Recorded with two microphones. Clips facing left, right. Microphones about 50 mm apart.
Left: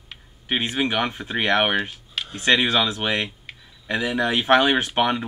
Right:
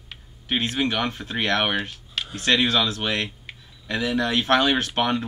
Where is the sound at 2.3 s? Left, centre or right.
Centre.